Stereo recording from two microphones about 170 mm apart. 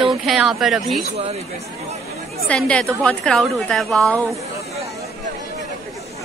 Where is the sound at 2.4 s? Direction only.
5° left (ahead or behind).